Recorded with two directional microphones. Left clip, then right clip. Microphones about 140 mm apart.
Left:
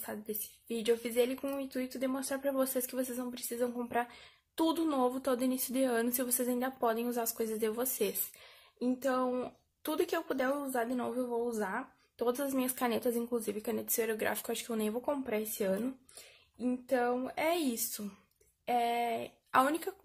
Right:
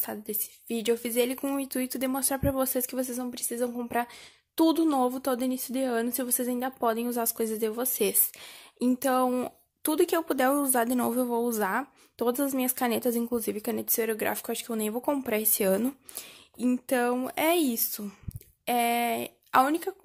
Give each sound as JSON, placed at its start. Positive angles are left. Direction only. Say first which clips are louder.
{"t": 0.0, "sound": "a woman's voice", "louder": "right 5 dB", "side_deg": -60}
{"t": 12.4, "sound": "a woman's voice", "louder": "right 5 dB", "side_deg": -50}
{"t": 16.5, "sound": "speech", "louder": "right 5 dB", "side_deg": -80}
{"t": 18.7, "sound": "speech", "louder": "right 5 dB", "side_deg": -80}
{"t": 19.6, "sound": "a woman's voice", "louder": "right 5 dB", "side_deg": -45}